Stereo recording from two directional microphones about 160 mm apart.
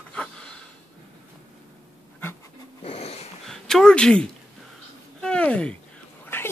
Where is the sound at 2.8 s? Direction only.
40° left (ahead or behind).